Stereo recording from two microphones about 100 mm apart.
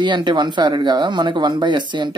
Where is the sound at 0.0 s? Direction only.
50° right (ahead or behind).